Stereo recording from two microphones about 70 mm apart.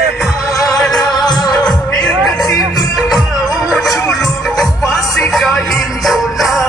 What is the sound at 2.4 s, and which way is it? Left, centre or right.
Music, left.